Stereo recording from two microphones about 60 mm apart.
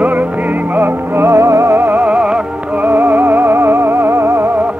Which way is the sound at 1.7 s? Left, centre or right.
Right.